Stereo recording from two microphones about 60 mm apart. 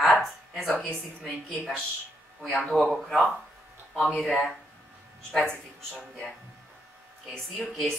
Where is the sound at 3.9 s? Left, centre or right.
Left.